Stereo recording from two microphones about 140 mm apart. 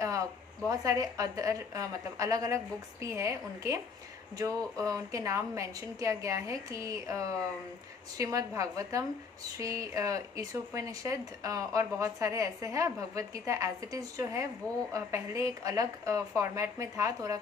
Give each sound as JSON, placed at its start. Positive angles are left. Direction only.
{"t": 0.7, "sound": "speech", "side_deg": -25}